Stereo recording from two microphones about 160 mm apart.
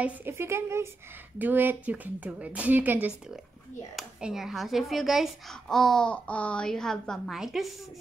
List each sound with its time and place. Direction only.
0.0 s a woman's voice: 15° right (ahead or behind)